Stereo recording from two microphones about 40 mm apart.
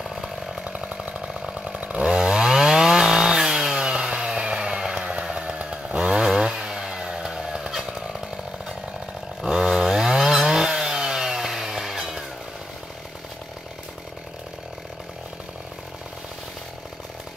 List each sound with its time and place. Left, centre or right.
0.0 s chainsaw: centre
0.7 s chainsaw: right
2.0 s chainsaw: centre; by 5.9 s right
5.9 s chainsaw: centre
9.6 s chainsaw: centre